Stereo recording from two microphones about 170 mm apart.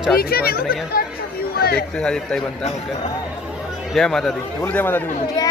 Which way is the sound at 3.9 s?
Centre (ahead or behind).